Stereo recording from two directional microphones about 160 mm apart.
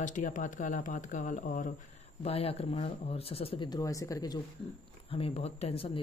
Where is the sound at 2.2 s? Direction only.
40° left (ahead or behind); by 4.4 s 25° left (ahead or behind).